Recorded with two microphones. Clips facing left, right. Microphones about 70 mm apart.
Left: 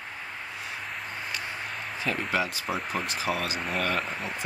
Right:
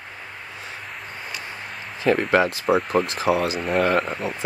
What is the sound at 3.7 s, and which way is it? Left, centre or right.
Speech, right.